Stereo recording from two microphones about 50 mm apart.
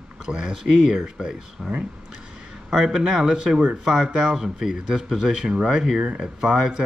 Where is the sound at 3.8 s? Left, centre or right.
Centre.